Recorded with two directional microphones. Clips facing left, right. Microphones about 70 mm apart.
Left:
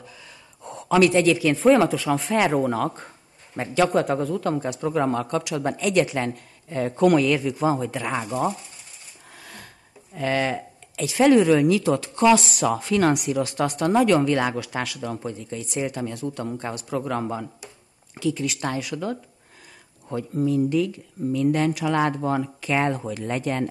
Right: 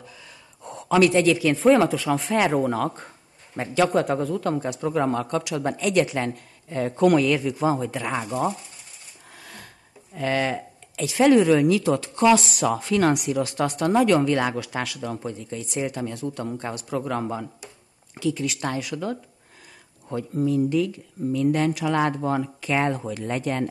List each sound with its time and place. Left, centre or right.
0.7 s speech: centre
9.3 s a sound: centre
10.1 s speech: centre